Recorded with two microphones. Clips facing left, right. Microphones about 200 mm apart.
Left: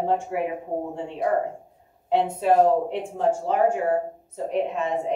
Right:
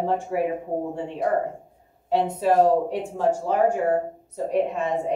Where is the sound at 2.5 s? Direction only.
40° right (ahead or behind).